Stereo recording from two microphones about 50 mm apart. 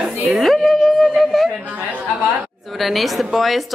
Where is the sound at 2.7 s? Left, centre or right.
Centre.